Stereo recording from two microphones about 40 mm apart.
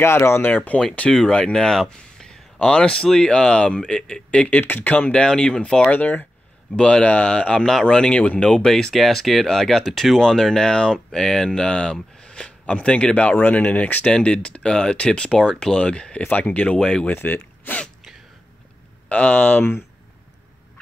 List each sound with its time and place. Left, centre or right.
0.0 s speech: left
0.7 s speech: left
1.1 s speech: centre
4.8 s speech: left
5.1 s speech: centre
5.9 s speech: left
6.7 s speech: left
7.5 s speech: centre
8.9 s speech: centre; by 13.3 s left
13.3 s speech: left
14.0 s speech: left
17.1 s speech: left
19.0 s speech: left